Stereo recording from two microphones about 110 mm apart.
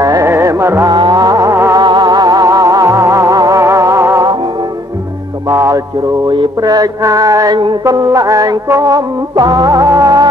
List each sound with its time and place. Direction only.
0.0 s music: 30° right (ahead or behind)
0.9 s music: 40° right (ahead or behind)
1.8 s music: 40° right (ahead or behind)
5.5 s music: 30° right (ahead or behind)
6.2 s mantra: 45° right (ahead or behind)
7.8 s music: 35° right (ahead or behind)